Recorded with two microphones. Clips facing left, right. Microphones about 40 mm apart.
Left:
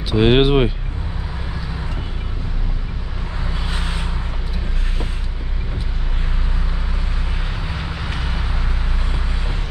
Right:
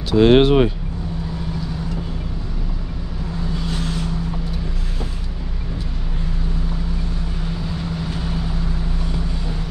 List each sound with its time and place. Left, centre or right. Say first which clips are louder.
0.1 s speech: right 2 dB; centre
3.3 s vehicle: right 2 dB; left
7.2 s vehicle: right 1 dB; left